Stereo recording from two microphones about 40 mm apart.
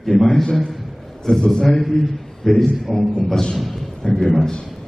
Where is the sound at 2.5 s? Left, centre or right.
Centre.